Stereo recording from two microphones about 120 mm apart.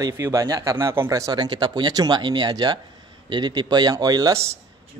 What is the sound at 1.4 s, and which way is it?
Speech, 40° right (ahead or behind).